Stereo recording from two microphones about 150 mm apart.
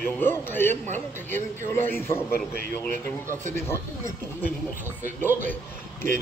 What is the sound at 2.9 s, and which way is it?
Speech, 55° right (ahead or behind).